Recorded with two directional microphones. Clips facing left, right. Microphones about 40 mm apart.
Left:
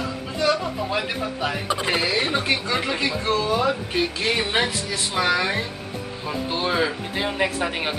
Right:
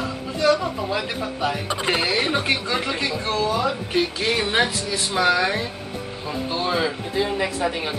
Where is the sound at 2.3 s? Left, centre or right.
Centre.